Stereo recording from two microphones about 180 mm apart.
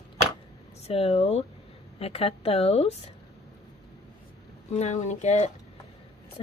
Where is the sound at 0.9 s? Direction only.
35° left (ahead or behind).